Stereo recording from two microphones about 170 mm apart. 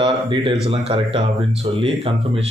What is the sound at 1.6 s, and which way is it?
Speech, 25° right (ahead or behind).